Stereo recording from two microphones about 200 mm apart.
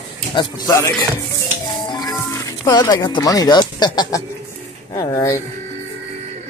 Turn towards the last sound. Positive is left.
turn(degrees=15)  # may be behind; listen again after turning